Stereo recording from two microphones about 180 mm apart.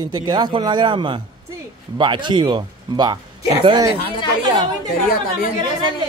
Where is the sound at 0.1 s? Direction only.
25° right (ahead or behind).